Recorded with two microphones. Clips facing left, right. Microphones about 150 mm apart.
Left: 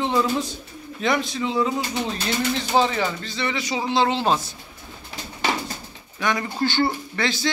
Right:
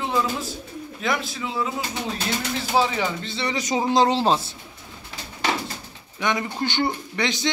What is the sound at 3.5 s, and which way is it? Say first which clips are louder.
Speech: right 4 dB; 40° right (ahead or behind).